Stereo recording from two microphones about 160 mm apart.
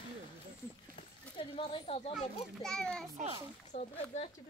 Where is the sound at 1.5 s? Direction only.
35° left (ahead or behind).